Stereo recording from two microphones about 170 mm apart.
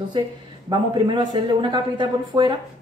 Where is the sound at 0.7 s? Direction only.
25° right (ahead or behind).